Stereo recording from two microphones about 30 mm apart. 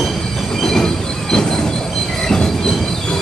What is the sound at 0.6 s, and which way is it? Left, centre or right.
Train, centre.